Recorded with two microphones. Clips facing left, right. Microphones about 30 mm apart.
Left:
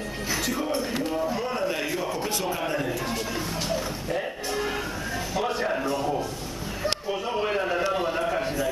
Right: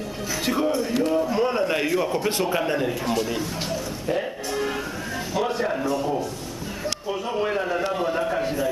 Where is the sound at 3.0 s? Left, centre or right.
Centre.